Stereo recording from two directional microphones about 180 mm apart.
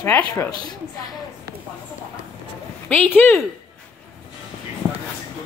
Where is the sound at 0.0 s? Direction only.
15° left (ahead or behind).